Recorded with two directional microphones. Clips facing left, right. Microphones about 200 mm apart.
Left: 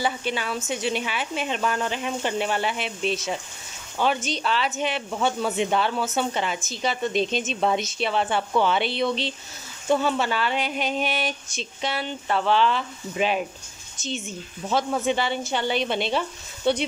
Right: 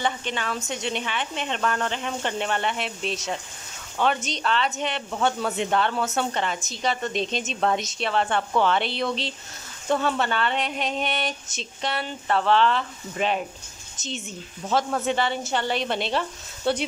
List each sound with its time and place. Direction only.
0.0 s speech: 10° left (ahead or behind)
14.7 s speech: centre (ahead or behind)